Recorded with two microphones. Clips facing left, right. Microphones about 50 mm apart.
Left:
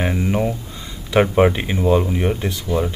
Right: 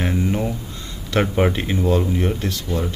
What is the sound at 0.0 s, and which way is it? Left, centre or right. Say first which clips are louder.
Speech: left 2 dB; centre.